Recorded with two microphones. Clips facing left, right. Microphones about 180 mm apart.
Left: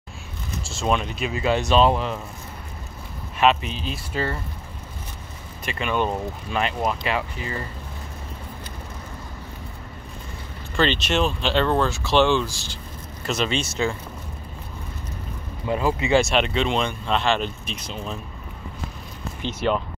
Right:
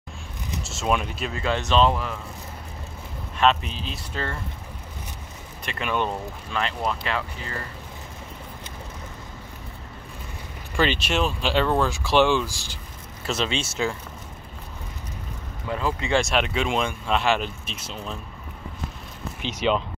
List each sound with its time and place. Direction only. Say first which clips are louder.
0.7 s speech: left 1 dB; 5° right (ahead or behind)
1.2 s speech: left 4 dB; 10° left (ahead or behind)
1.9 s speech: left 3 dB; 20° left (ahead or behind)
3.3 s speech: left 1 dB; 5° left (ahead or behind)
5.7 s speech: left 2 dB; centre (ahead or behind)
6.5 s speech: left 2 dB; 15° left (ahead or behind)
10.8 s speech: left 2 dB; 5° right (ahead or behind)
15.6 s speech: left 4 dB; 20° left (ahead or behind)
16.0 s speech: left 2 dB; 5° left (ahead or behind)
19.4 s speech: even; 15° right (ahead or behind)